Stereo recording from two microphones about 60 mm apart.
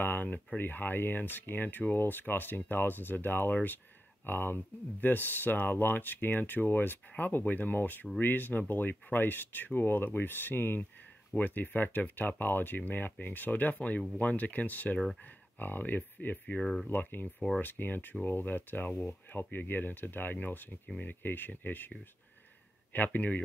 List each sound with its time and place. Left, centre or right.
0.0 s speech: left
16.6 s speech: centre
16.9 s speech: left
22.9 s speech: left